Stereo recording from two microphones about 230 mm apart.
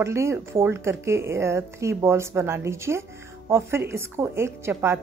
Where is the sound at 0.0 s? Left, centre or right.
Centre.